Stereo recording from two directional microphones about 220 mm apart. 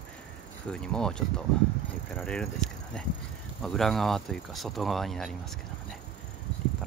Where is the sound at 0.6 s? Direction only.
5° left (ahead or behind).